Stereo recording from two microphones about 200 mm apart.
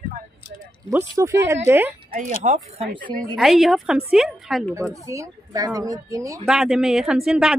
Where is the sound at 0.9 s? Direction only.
10° right (ahead or behind).